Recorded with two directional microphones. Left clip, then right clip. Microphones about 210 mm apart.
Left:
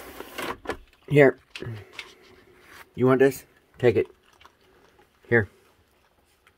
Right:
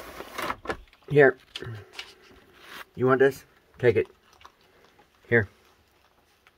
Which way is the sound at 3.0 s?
20° left (ahead or behind).